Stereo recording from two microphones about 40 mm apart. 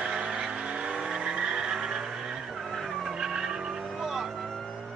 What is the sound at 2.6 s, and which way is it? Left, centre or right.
Vehicle, centre.